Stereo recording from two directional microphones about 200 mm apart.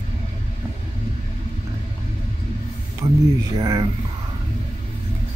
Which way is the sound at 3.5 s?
20° right (ahead or behind).